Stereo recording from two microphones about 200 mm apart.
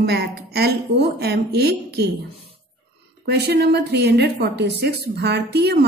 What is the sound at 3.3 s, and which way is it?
A woman's voice, 55° right (ahead or behind).